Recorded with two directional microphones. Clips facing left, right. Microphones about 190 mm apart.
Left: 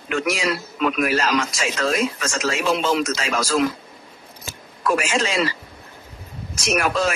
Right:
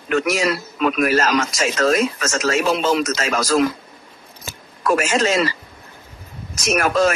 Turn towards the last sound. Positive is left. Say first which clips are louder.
# right 4 dB
turn(degrees=-45)  # may be behind; listen again after turning